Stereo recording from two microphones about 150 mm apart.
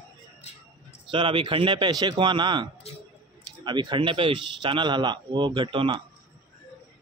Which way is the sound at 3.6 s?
30° right (ahead or behind).